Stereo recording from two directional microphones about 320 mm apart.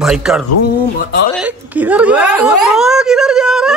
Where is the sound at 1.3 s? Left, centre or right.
Centre.